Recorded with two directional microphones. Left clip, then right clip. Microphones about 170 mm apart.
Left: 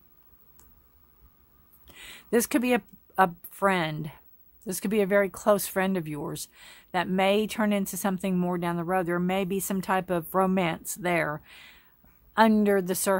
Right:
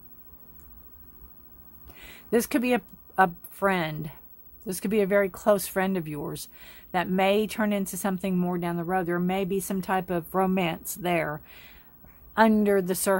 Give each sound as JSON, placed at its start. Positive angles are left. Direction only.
{"t": 1.9, "sound": "a woman's voice", "side_deg": 20}